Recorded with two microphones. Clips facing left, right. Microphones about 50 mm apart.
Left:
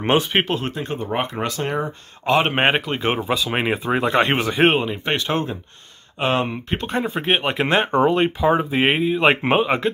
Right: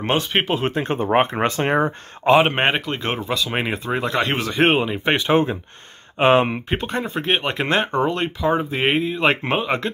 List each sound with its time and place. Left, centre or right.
0.0 s speech: centre
0.6 s speech: right
2.5 s speech: centre; by 4.6 s left
4.6 s speech: centre
4.9 s speech: centre
6.7 s speech: centre
7.0 s speech: centre
7.9 s speech: centre